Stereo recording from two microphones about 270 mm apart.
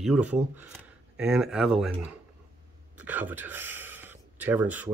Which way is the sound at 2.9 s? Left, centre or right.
Centre.